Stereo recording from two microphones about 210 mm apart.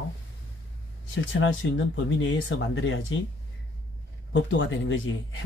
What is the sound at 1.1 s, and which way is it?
Speech, 65° left (ahead or behind).